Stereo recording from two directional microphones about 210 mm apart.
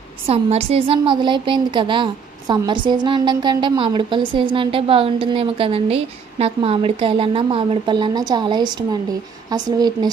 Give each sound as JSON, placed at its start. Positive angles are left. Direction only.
{"t": 0.3, "sound": "a woman's voice", "side_deg": -30}